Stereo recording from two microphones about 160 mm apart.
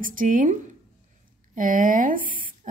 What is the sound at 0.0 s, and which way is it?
A woman's voice, 55° right (ahead or behind).